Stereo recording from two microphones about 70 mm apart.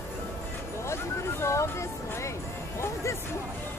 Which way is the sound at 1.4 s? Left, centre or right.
Left.